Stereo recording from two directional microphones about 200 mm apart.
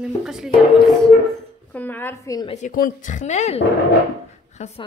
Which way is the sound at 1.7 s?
10° left (ahead or behind).